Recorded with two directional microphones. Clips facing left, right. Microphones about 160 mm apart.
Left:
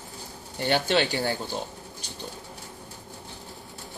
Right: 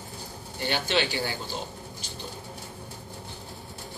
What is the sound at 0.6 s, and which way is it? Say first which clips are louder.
Speech: left 4 dB; 50° left (ahead or behind).